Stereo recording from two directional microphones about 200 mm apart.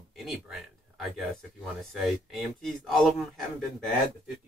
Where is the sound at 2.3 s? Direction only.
Centre (ahead or behind).